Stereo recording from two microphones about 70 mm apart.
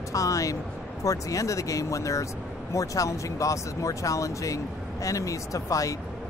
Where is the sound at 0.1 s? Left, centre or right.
Left.